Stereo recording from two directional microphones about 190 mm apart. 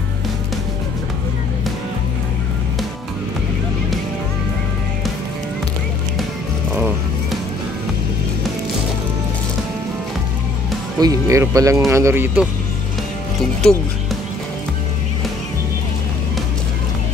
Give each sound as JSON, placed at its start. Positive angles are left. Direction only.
{"t": 11.0, "sound": "speech", "side_deg": -20}